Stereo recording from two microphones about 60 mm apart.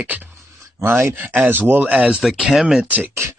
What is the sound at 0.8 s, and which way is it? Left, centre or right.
Speech, right.